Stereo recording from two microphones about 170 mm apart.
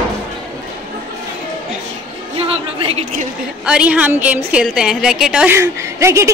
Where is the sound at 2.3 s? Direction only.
35° right (ahead or behind).